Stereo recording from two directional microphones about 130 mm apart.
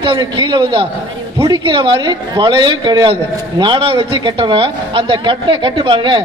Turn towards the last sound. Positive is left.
turn(degrees=-40)  # may be behind; listen again after turning